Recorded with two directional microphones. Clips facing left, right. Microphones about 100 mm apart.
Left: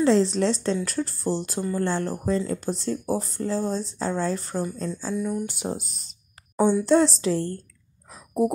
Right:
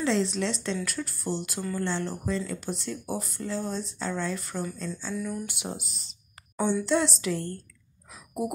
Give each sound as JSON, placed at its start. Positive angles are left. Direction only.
{"t": 0.0, "sound": "speech", "side_deg": 35}
{"t": 5.5, "sound": "a sound", "side_deg": 40}
{"t": 6.7, "sound": "speech", "side_deg": 40}